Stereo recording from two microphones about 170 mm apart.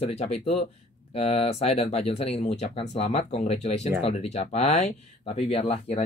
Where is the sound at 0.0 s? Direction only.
40° left (ahead or behind).